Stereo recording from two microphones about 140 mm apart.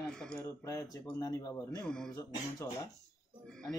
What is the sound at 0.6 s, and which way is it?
A man's voice, 25° left (ahead or behind).